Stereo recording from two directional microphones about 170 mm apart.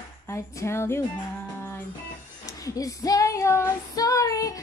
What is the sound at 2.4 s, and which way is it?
Female singing, 20° left (ahead or behind).